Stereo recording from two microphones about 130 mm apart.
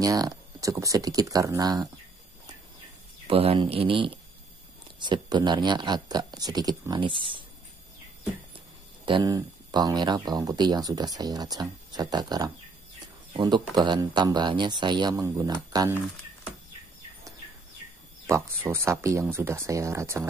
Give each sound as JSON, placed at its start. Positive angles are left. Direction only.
{"t": 0.0, "sound": "speech", "side_deg": -25}
{"t": 3.3, "sound": "speech", "side_deg": -45}
{"t": 8.5, "sound": "speech", "side_deg": -40}
{"t": 18.2, "sound": "speech", "side_deg": -20}